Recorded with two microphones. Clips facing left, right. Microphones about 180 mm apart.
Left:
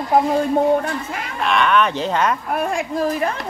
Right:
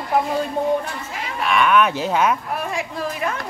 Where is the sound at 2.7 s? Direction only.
40° left (ahead or behind).